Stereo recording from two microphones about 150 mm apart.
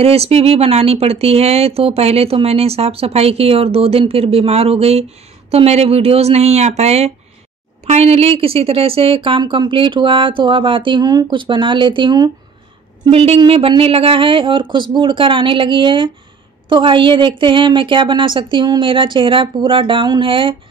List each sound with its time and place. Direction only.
0.0 s a woman's voice: 40° right (ahead or behind)
13.0 s a woman's voice: 40° right (ahead or behind)